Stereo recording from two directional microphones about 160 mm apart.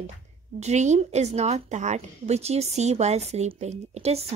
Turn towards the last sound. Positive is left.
turn(degrees=-40)  # may be behind; listen again after turning